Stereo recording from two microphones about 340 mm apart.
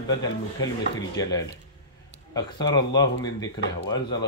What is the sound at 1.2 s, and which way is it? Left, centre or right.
Speech, centre.